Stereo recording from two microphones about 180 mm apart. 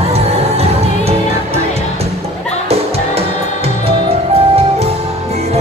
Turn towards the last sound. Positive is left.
turn(degrees=-35)  # may be behind; listen again after turning